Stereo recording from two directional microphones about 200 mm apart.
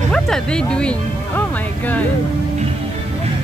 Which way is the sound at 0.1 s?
5° left (ahead or behind).